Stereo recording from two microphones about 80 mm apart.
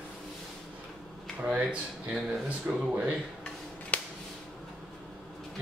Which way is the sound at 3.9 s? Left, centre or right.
Centre.